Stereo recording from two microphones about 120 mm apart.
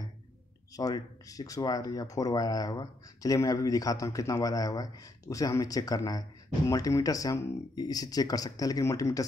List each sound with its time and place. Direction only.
0.7 s speech: 30° left (ahead or behind)